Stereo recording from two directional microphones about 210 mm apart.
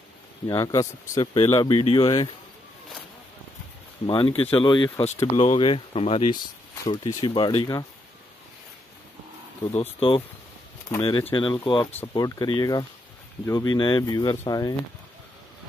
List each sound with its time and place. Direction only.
0.5 s speech: 15° left (ahead or behind)
4.0 s speech: 20° left (ahead or behind)
6.8 s speech: 15° left (ahead or behind)
9.8 s speech: 25° left (ahead or behind)